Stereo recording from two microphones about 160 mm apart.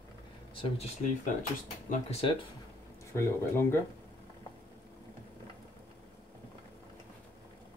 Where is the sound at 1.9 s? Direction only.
40° left (ahead or behind).